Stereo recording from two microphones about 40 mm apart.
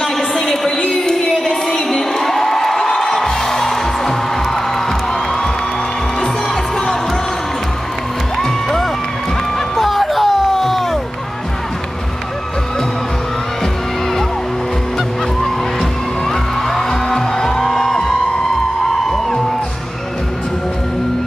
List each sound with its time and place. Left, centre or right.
0.0 s a sound: centre
0.7 s crowd: centre
3.0 s music: centre
8.4 s music: centre
15.4 s music: centre